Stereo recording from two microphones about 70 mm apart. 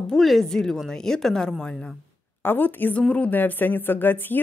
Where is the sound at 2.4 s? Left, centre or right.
Left.